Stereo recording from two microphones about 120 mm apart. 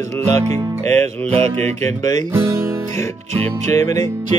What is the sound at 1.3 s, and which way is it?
Music, 60° right (ahead or behind).